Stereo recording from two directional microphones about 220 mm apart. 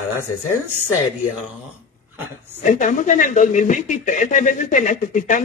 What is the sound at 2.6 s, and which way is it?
Speech, 35° left (ahead or behind).